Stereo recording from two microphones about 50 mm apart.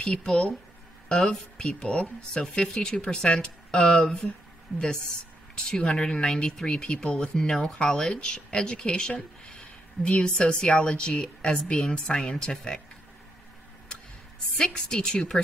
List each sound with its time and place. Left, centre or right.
0.0 s speech: centre
5.7 s speech: centre
14.6 s speech: centre